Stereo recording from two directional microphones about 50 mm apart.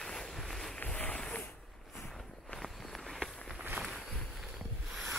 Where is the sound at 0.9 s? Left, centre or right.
Left.